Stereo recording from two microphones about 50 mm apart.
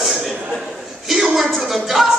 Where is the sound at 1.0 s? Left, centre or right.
Centre.